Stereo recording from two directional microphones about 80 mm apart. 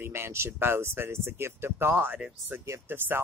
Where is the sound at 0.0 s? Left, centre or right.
Right.